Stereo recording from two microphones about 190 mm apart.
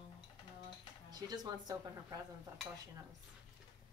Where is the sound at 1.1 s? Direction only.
20° right (ahead or behind).